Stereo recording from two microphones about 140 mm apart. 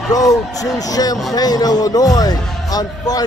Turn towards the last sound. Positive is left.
turn(degrees=25)  # may be behind; listen again after turning